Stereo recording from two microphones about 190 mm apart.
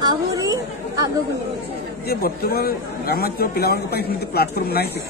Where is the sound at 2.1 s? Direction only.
55° left (ahead or behind).